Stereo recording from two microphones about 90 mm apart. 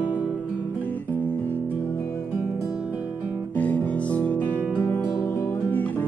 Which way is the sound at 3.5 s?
15° left (ahead or behind).